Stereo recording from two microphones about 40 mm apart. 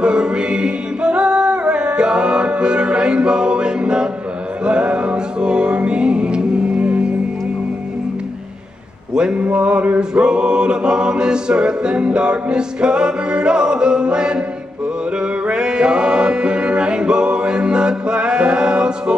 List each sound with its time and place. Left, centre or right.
0.0 s a capella: right
4.6 s music: right
9.1 s a sound: right
9.4 s a capella: right
15.4 s music: right